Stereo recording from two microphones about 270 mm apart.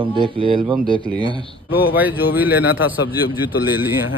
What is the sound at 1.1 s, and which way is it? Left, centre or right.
Speech, centre.